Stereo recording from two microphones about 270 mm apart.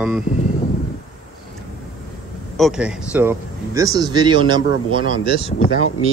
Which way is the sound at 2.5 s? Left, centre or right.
Centre.